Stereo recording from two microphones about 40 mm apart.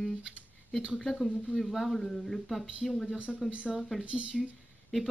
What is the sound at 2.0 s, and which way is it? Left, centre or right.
Speech, centre.